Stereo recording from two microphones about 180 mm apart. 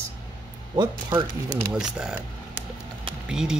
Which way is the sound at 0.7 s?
20° right (ahead or behind).